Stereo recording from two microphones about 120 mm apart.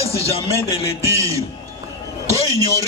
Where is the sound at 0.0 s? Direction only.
25° right (ahead or behind).